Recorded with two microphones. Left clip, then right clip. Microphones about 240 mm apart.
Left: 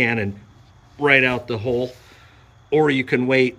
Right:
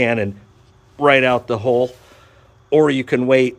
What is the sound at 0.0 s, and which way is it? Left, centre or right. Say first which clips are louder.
Speech: right 3 dB; centre.